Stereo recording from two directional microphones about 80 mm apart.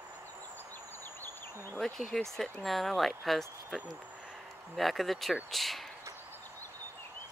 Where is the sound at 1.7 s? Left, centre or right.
Centre.